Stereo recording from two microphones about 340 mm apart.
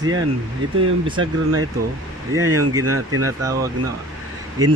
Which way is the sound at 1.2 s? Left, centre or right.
Right.